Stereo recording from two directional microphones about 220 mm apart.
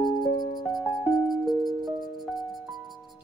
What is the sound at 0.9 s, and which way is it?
Music, centre (ahead or behind).